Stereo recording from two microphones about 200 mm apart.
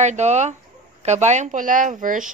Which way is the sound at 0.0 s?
35° right (ahead or behind).